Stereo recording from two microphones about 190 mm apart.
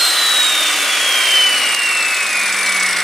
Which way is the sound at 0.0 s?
Centre (ahead or behind).